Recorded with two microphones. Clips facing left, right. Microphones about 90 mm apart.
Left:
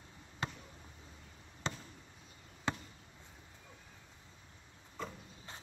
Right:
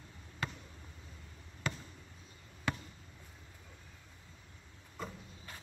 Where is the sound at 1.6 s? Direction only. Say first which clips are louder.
Right 1 dB; 25° left (ahead or behind).